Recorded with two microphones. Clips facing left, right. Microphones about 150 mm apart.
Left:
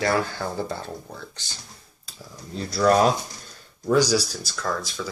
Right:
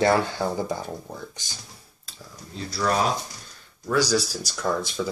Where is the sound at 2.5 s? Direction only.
40° left (ahead or behind).